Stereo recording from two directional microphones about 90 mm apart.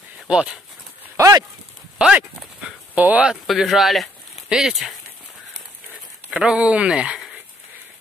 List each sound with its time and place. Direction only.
0.3 s speech: 10° right (ahead or behind)
1.1 s a sound: 35° right (ahead or behind)
2.0 s clip-clop: 10° right (ahead or behind)
3.0 s speech: 15° right (ahead or behind)
3.4 s speech: 5° right (ahead or behind)
6.3 s speech: 10° right (ahead or behind)